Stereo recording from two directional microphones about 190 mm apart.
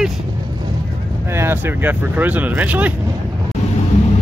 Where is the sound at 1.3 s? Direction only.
10° right (ahead or behind).